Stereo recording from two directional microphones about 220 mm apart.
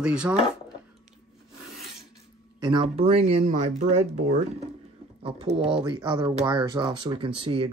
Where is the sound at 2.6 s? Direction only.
20° right (ahead or behind).